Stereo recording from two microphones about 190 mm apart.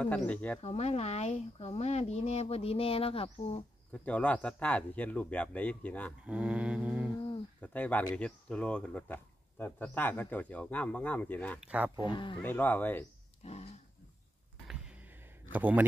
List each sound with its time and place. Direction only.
0.0 s speech: 5° left (ahead or behind)
0.6 s speech: 35° left (ahead or behind)
3.9 s speech: 5° left (ahead or behind)
6.2 s mantra: 5° right (ahead or behind)
7.2 s a sound: 25° left (ahead or behind)
7.6 s speech: 10° left (ahead or behind)
11.6 s mantra: 5° right (ahead or behind)
12.0 s speech: 25° left (ahead or behind)
12.4 s speech: 10° left (ahead or behind)
13.4 s a sound: 35° left (ahead or behind)
14.7 s a sound: 5° right (ahead or behind)
15.5 s mantra: 10° right (ahead or behind)